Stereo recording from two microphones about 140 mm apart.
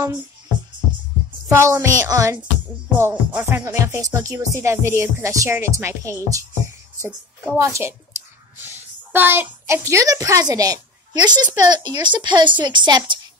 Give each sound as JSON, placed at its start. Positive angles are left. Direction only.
{"t": 1.5, "sound": "music", "side_deg": -20}
{"t": 8.6, "sound": "a child's voice", "side_deg": -15}